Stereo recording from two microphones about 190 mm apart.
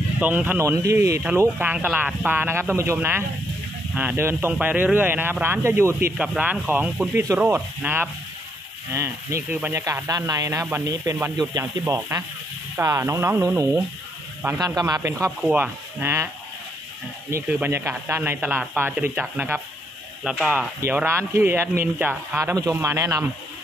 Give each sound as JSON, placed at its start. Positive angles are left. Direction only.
{"t": 0.2, "sound": "speech", "side_deg": -10}
{"t": 17.3, "sound": "speech", "side_deg": -10}